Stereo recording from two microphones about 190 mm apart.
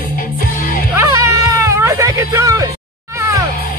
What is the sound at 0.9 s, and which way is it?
Music, 15° right (ahead or behind).